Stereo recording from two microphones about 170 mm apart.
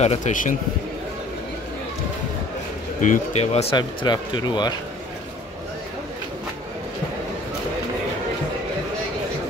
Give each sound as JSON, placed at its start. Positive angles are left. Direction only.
{"t": 0.0, "sound": "speech", "side_deg": 45}
{"t": 3.0, "sound": "speech", "side_deg": 45}
{"t": 3.7, "sound": "speech", "side_deg": 25}